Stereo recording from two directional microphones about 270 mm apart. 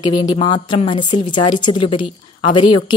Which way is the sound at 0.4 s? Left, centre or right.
Centre.